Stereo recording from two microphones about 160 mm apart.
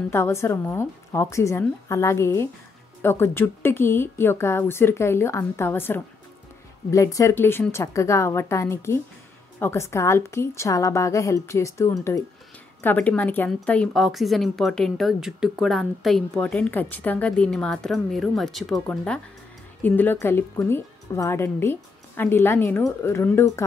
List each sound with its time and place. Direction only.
0.1 s speech: 15° left (ahead or behind)
12.8 s a woman's voice: 10° left (ahead or behind)